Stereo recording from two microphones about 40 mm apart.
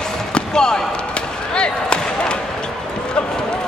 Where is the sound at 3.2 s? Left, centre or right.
Left.